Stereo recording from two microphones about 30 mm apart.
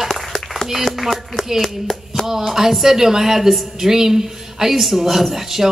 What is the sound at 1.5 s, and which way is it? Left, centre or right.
Speech, centre.